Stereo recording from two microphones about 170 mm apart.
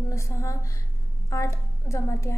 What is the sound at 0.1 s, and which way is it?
A woman's voice, 15° left (ahead or behind).